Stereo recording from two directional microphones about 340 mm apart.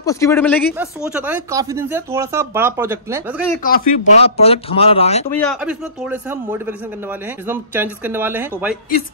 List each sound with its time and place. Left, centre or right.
0.0 s speech: centre
3.6 s speech: left
5.3 s a man's voice: centre